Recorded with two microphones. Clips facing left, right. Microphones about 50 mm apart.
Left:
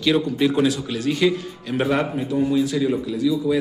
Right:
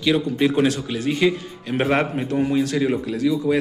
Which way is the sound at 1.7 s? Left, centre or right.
Right.